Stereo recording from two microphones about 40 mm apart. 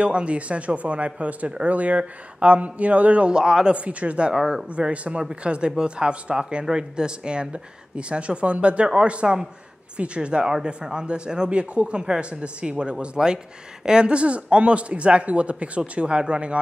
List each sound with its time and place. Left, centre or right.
0.0 s speech: right
3.3 s speech: centre
3.7 s speech: right
4.3 s speech: centre
4.6 s speech: right